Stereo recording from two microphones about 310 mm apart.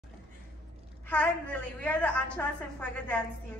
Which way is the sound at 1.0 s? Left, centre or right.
Centre.